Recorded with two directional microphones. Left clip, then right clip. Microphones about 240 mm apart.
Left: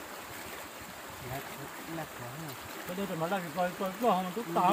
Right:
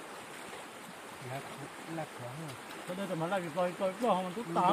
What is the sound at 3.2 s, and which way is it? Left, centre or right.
Speech, centre.